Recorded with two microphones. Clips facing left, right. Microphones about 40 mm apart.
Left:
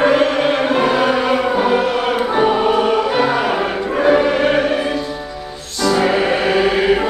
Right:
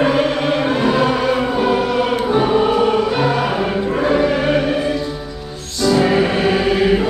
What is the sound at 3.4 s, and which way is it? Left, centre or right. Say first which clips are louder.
Music: left 1 dB; centre.